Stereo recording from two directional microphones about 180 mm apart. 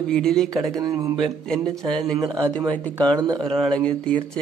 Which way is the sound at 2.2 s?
20° right (ahead or behind).